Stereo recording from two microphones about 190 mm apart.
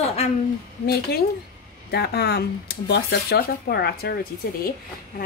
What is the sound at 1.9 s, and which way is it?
A woman's voice, 55° left (ahead or behind).